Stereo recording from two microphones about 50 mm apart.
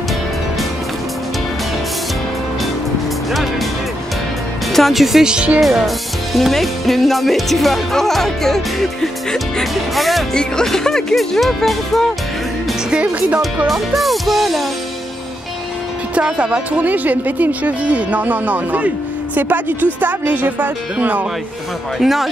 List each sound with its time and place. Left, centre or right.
4.7 s speech: centre
5.2 s speech: centre
6.3 s speech: centre
10.3 s speech: centre
13.7 s speech: centre
16.2 s speech: right
16.7 s speech: right
21.9 s speech: centre